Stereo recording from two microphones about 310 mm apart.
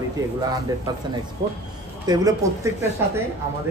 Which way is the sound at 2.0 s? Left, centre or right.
Centre.